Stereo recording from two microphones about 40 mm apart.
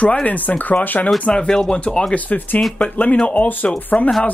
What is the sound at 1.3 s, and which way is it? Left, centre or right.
Speech, centre.